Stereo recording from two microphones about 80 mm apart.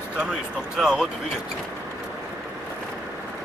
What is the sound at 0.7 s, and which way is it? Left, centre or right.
Speech, centre.